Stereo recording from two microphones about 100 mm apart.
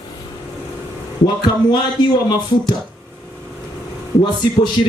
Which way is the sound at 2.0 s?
45° left (ahead or behind).